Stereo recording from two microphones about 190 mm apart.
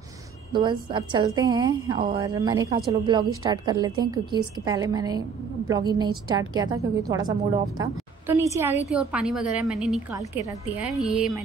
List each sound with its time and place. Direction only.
0.5 s a woman's voice: 25° right (ahead or behind)
8.8 s a woman's voice: 5° right (ahead or behind)
10.1 s a woman's voice: 15° right (ahead or behind)